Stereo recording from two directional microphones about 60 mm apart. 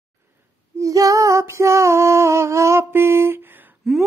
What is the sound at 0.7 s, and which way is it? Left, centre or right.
Female singing, right.